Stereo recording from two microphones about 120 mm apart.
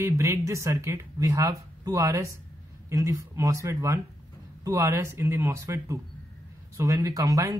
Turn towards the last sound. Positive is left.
turn(degrees=-30)  # may be behind; listen again after turning